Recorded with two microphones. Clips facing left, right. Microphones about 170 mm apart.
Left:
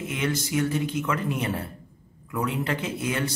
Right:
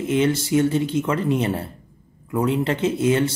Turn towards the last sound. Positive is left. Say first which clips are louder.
# right 9 dB
turn(degrees=-25)  # may be behind; listen again after turning